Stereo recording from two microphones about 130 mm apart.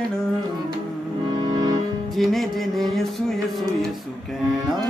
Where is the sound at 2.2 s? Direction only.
Centre (ahead or behind).